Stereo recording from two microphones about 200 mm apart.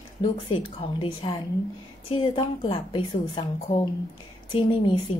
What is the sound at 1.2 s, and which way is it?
Speech, 25° left (ahead or behind).